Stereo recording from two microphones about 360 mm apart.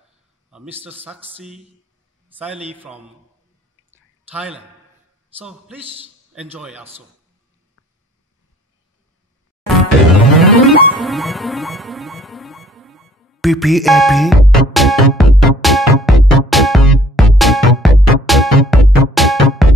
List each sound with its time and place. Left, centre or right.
0.5 s a man's voice: centre
2.2 s a man's voice: centre
3.9 s a sound: centre
5.4 s a man's voice: centre
10.4 s music: centre